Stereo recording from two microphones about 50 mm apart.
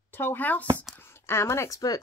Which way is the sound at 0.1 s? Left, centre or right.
Left.